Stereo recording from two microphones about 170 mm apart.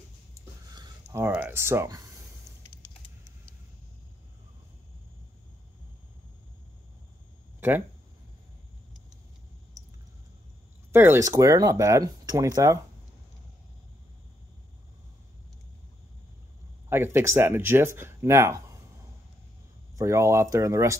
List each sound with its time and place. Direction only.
0.3 s a sound: 25° right (ahead or behind)
1.2 s speech: 10° right (ahead or behind)
10.9 s speech: 15° right (ahead or behind)
16.9 s speech: 15° right (ahead or behind)
20.0 s speech: 15° right (ahead or behind)